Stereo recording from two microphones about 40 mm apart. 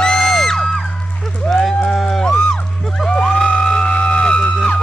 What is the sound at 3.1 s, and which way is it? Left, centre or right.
Music, centre.